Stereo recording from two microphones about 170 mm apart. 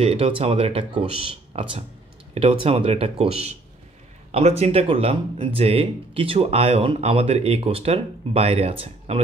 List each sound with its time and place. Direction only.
0.0 s speech: 35° right (ahead or behind)